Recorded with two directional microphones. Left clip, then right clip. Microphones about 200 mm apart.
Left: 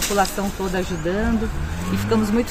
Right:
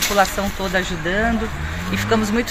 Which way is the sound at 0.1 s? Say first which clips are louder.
Right 3 dB; 20° right (ahead or behind).